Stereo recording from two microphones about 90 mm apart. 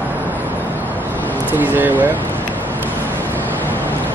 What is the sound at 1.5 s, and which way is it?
Speech, 20° right (ahead or behind).